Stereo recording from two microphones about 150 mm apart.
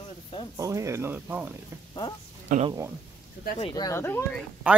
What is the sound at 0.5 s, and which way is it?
Speech, 20° right (ahead or behind).